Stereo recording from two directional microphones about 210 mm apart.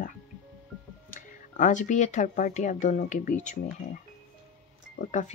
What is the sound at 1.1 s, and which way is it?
Speech, 40° left (ahead or behind).